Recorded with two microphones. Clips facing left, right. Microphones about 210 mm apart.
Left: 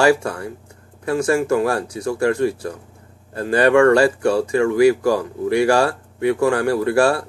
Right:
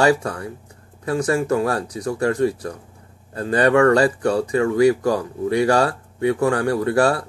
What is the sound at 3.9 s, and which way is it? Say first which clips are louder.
Speech: left 2 dB; 30° left (ahead or behind).